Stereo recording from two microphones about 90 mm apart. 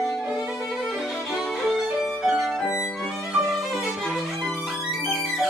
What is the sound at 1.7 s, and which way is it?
Music, 5° right (ahead or behind).